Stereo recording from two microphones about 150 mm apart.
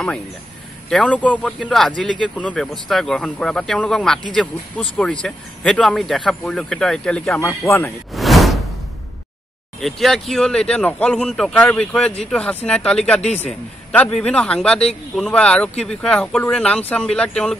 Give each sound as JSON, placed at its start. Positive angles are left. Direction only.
{"t": 0.8, "sound": "speech", "side_deg": 5}
{"t": 7.3, "sound": "speech", "side_deg": 20}
{"t": 8.1, "sound": "whoosh", "side_deg": 0}
{"t": 9.8, "sound": "speech", "side_deg": 0}